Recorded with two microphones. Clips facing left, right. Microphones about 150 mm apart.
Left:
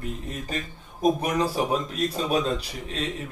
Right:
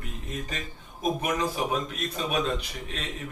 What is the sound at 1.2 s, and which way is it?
Speech, 35° left (ahead or behind).